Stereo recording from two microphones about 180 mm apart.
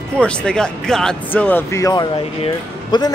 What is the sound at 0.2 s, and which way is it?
Speech, 5° left (ahead or behind).